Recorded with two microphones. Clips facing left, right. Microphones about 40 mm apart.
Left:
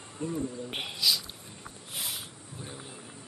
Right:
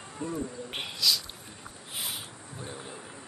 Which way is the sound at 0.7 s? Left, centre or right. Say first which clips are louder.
Right 1 dB; centre.